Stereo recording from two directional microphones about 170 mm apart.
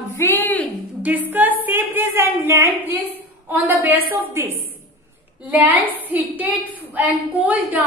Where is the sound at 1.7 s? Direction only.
10° right (ahead or behind).